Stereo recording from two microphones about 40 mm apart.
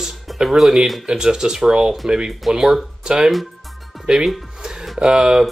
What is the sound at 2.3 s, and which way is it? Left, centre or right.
Speech, centre.